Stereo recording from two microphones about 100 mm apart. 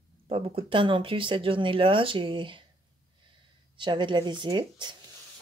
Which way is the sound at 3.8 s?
50° right (ahead or behind).